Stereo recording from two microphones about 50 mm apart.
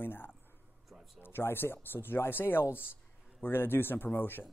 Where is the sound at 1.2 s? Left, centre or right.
Left.